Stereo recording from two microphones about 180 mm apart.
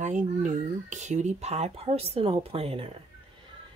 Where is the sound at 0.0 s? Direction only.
45° right (ahead or behind).